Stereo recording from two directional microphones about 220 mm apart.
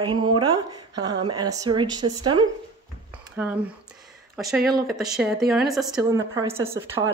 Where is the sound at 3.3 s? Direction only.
5° right (ahead or behind).